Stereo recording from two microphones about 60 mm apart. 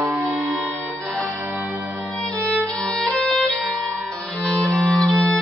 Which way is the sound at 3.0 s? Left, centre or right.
Centre.